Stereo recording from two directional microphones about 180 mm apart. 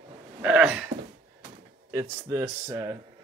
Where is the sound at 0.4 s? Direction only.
5° right (ahead or behind).